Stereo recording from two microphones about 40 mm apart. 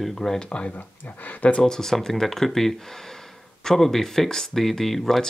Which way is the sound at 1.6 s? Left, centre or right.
Centre.